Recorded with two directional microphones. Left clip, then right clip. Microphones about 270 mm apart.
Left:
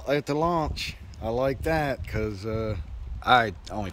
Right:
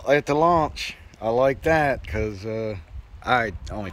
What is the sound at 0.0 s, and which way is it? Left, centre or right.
Speech, centre.